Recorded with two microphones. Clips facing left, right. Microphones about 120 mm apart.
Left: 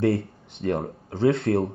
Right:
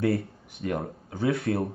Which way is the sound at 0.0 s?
25° left (ahead or behind).